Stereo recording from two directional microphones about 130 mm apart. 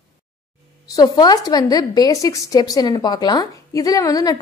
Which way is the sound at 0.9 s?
30° left (ahead or behind).